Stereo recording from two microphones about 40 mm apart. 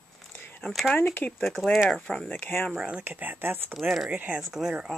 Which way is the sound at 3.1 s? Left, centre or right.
Right.